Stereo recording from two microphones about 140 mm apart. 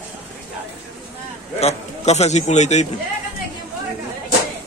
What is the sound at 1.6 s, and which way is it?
Speech, 50° left (ahead or behind).